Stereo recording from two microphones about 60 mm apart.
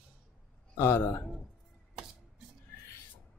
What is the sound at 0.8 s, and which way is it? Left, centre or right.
Speech, left.